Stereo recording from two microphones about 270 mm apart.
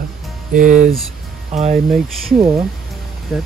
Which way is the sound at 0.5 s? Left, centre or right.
Right.